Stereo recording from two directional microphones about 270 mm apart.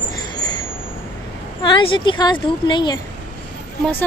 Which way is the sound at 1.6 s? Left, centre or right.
Centre.